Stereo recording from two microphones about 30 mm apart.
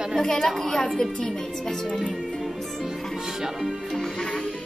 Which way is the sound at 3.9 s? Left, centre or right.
Left.